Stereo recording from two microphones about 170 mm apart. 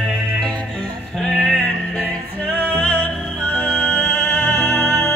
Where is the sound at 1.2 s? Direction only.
5° left (ahead or behind).